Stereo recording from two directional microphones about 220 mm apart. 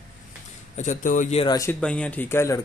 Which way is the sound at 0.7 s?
35° left (ahead or behind).